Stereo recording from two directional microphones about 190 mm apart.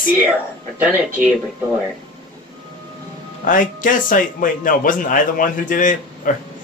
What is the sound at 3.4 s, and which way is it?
A man's voice, 45° left (ahead or behind).